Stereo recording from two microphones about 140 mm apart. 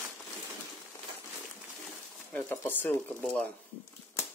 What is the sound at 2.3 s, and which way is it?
Speech, 15° left (ahead or behind).